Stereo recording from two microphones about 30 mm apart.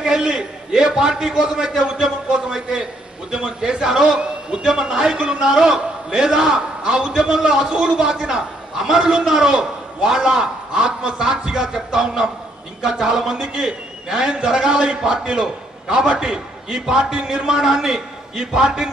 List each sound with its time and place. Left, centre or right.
0.0 s a sound: right
0.4 s a man's voice: right
3.8 s a man's voice: centre
5.1 s a man's voice: right
5.5 s a man's voice: centre
17.5 s a man's voice: centre